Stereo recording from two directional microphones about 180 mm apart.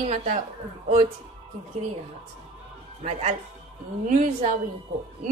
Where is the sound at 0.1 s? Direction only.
35° right (ahead or behind).